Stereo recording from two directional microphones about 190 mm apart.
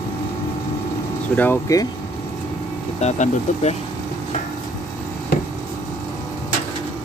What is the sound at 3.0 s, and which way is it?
Speech, 35° left (ahead or behind).